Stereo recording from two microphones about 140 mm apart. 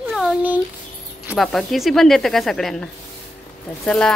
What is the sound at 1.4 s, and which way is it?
A woman's voice, centre (ahead or behind).